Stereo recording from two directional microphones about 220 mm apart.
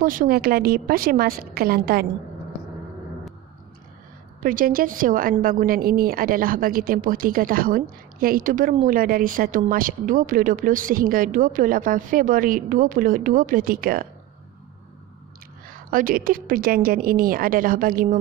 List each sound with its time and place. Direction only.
0.0 s a woman's voice: 40° right (ahead or behind)
4.4 s a woman's voice: 40° right (ahead or behind)
15.7 s a woman's voice: 40° right (ahead or behind)